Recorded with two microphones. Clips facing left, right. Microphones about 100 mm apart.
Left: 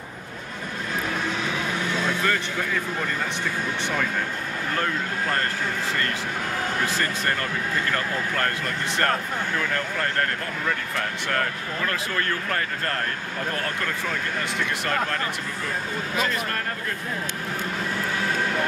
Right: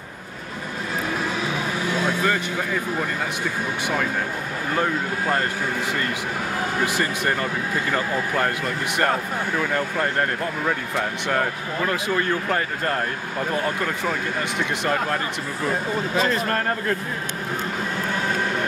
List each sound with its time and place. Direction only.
2.2 s speech: 15° right (ahead or behind)
4.7 s speech: 15° right (ahead or behind)
6.8 s speech: 15° right (ahead or behind)
16.2 s speech: 35° right (ahead or behind)